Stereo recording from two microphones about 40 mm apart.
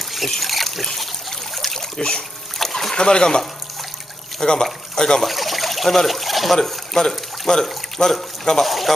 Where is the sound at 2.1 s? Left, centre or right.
Centre.